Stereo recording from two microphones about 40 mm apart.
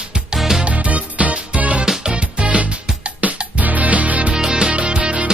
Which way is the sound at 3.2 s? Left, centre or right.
Right.